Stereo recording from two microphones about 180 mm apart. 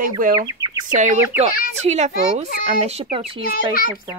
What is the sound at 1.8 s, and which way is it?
A child's voice, 40° right (ahead or behind).